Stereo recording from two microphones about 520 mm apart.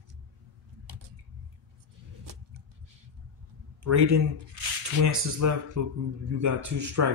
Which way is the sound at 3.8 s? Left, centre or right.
Right.